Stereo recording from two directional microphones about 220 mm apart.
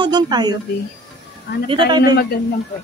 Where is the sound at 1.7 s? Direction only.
20° right (ahead or behind).